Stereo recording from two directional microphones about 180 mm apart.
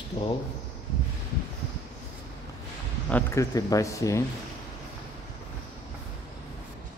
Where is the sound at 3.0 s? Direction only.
10° left (ahead or behind).